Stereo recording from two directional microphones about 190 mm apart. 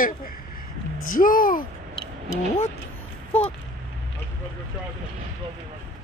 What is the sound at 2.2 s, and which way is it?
Speech, 40° left (ahead or behind).